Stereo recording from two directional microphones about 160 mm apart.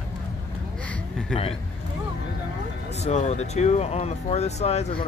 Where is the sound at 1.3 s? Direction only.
5° left (ahead or behind).